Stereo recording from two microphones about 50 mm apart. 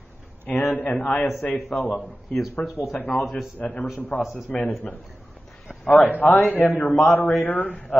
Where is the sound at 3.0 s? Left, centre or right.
Left.